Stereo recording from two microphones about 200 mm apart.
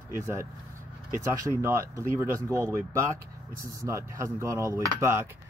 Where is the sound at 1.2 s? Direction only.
15° right (ahead or behind).